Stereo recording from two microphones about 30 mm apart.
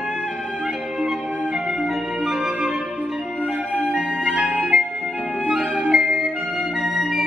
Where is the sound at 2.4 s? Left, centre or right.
Centre.